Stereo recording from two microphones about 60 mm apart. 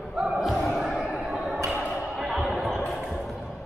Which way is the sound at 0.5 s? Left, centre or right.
Centre.